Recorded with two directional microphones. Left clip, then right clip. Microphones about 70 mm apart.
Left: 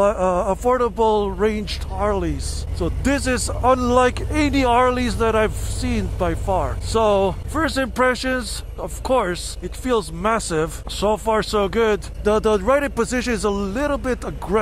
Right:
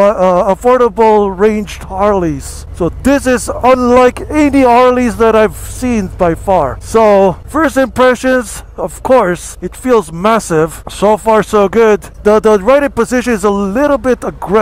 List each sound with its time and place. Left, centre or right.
0.3 s speech: right
6.1 s speech: centre
7.0 s speech: right
7.2 s speech: centre